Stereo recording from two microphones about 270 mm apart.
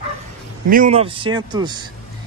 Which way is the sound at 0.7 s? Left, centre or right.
Right.